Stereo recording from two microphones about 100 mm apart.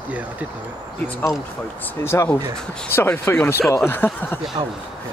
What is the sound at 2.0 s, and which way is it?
Speech, 25° left (ahead or behind).